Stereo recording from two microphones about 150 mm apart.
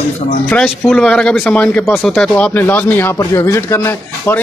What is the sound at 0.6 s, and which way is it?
Speech, 5° left (ahead or behind).